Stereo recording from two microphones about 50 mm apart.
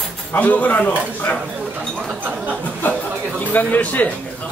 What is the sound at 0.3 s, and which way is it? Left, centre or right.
Speech, left.